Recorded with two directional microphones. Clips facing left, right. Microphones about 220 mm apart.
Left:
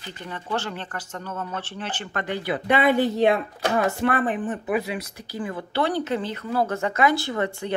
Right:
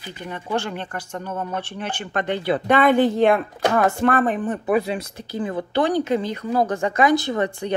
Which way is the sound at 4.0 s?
45° right (ahead or behind).